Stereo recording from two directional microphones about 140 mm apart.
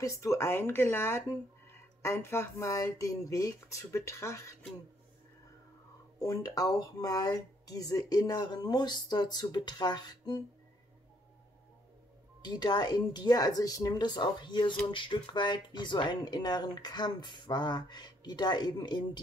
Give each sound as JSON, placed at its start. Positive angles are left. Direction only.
{"t": 0.0, "sound": "speech", "side_deg": 20}
{"t": 6.1, "sound": "speech", "side_deg": 25}
{"t": 12.4, "sound": "speech", "side_deg": 30}